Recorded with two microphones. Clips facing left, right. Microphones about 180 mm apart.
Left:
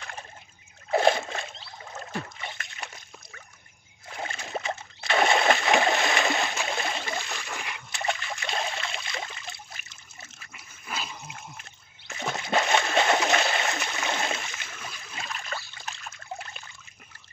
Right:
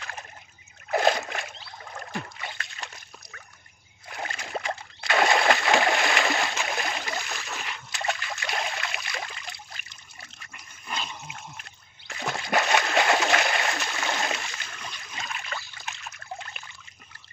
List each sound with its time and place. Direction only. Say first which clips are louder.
0.9 s a sound: left 1 dB; 25° left (ahead or behind)
4.1 s splash: even; 25° left (ahead or behind)
6.7 s a sound: even; 25° left (ahead or behind)
7.9 s trickle: even; 25° left (ahead or behind)
10.5 s toilet flush: right 1 dB; 5° left (ahead or behind)
12.1 s splash: even; 25° left (ahead or behind)
15.1 s trickle: even; 35° left (ahead or behind)